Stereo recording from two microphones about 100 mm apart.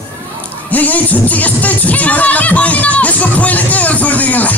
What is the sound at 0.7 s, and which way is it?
Music, 15° left (ahead or behind).